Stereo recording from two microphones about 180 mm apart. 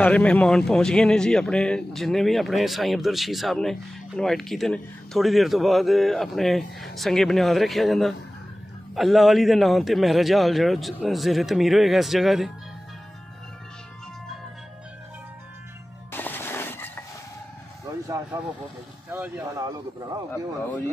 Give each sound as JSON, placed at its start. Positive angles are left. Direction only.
{"t": 0.0, "sound": "a man's voice", "side_deg": 5}
{"t": 16.1, "sound": "music", "side_deg": 10}
{"t": 19.0, "sound": "speech", "side_deg": -10}